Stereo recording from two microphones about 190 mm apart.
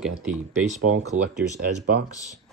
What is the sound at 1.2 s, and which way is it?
Speech, 40° right (ahead or behind).